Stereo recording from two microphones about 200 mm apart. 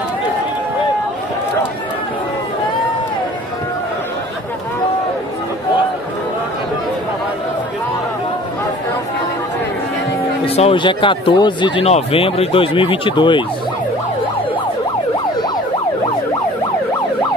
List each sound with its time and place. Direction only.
10.4 s speech: 30° left (ahead or behind)